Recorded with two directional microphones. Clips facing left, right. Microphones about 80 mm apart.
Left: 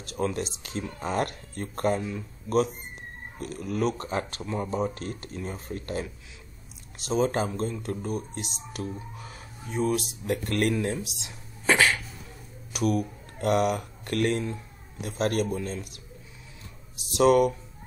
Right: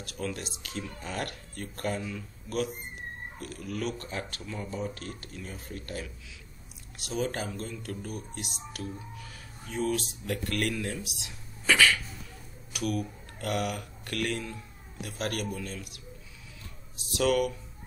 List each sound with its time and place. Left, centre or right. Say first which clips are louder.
0.0 s speech: left 7 dB; left